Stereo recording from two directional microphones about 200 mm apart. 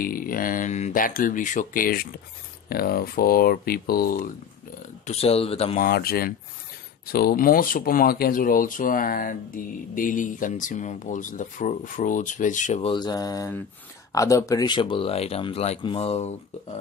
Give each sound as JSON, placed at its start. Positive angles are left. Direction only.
{"t": 0.0, "sound": "speech", "side_deg": 45}
{"t": 5.0, "sound": "speech", "side_deg": 30}
{"t": 5.8, "sound": "speech", "side_deg": 50}
{"t": 12.9, "sound": "mantra", "side_deg": 20}
{"t": 14.1, "sound": "speech", "side_deg": 15}